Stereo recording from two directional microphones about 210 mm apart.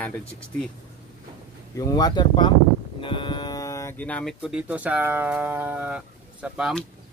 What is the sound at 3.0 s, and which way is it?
Livestock, 25° left (ahead or behind).